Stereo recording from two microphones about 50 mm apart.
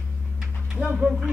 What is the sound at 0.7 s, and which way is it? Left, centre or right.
Speech, centre.